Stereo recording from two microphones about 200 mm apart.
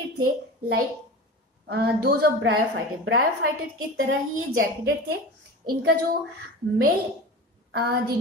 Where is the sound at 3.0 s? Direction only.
90° right.